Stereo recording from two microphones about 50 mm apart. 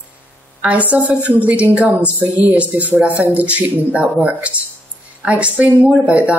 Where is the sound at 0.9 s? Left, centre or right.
Right.